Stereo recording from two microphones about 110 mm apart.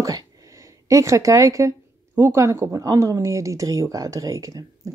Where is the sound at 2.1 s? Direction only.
25° right (ahead or behind).